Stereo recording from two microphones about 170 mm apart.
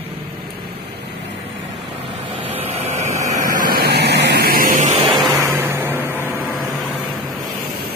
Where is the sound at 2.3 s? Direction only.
40° right (ahead or behind).